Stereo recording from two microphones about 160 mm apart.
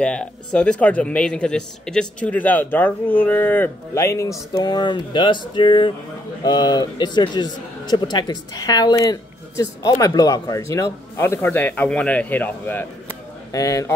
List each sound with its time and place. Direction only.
0.0 s a man's voice: 5° left (ahead or behind)